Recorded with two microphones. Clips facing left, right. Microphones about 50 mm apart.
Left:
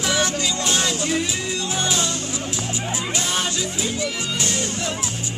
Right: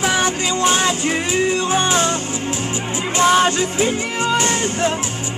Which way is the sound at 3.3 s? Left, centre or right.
Right.